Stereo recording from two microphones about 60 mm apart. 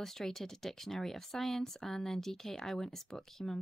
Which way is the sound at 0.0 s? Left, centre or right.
Centre.